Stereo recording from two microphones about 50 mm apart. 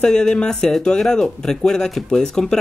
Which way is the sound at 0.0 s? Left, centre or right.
Centre.